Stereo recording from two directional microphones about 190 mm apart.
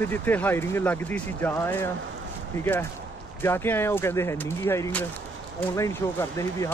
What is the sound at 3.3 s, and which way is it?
Speech, 10° left (ahead or behind).